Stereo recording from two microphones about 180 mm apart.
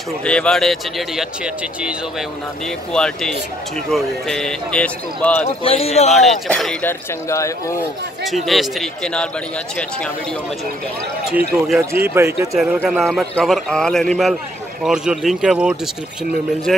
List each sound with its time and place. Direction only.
0.2 s speech: 5° left (ahead or behind)
5.6 s a man's voice: 30° left (ahead or behind)
6.1 s speech: centre (ahead or behind); by 7.7 s 15° left (ahead or behind)
8.5 s speech: centre (ahead or behind)
11.9 s speech: 15° right (ahead or behind)
12.5 s speech: centre (ahead or behind)